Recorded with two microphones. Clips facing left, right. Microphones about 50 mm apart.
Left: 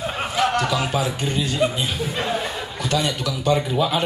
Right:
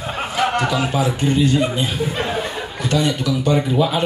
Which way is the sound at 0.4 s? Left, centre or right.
Centre.